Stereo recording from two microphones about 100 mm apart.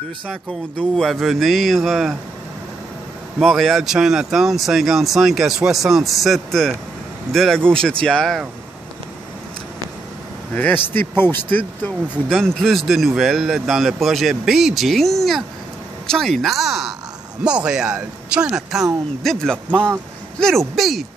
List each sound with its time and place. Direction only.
0.9 s speech: centre (ahead or behind)
3.3 s speech: 5° left (ahead or behind)
10.5 s speech: 20° left (ahead or behind)
12.3 s speech: 5° left (ahead or behind)
19.2 s speech: 5° left (ahead or behind)